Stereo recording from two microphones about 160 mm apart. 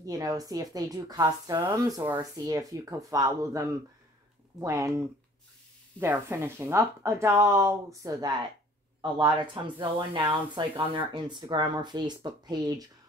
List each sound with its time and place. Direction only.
0.0 s a woman's voice: 20° right (ahead or behind)
5.9 s a woman's voice: 15° right (ahead or behind)